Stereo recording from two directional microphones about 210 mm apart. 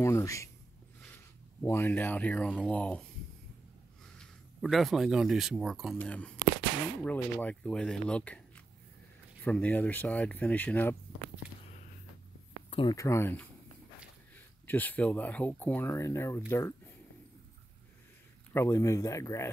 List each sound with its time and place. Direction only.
0.0 s speech: 15° left (ahead or behind)
1.0 s a sound: 10° left (ahead or behind)
2.7 s speech: 5° left (ahead or behind)
4.2 s speech: centre (ahead or behind)
12.6 s a sound: 25° left (ahead or behind)
12.9 s speech: 15° left (ahead or behind)
18.5 s speech: 15° left (ahead or behind)